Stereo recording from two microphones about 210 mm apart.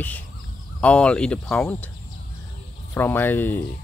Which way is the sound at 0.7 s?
5° left (ahead or behind).